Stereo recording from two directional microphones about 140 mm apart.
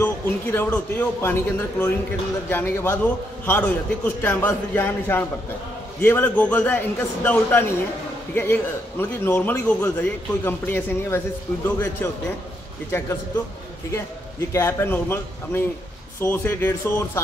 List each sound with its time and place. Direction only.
0.0 s a man's voice: 15° left (ahead or behind)
14.5 s a man's voice: 20° left (ahead or behind)